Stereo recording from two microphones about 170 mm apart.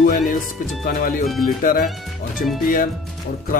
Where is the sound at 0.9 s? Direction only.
55° left (ahead or behind).